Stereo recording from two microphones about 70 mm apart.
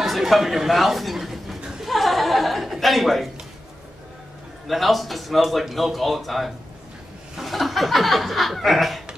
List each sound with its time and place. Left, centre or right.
0.0 s a sound: centre
1.6 s chuckle: centre
4.6 s speech: centre